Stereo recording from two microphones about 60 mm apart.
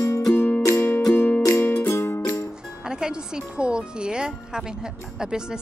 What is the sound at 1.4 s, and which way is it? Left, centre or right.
Music, left.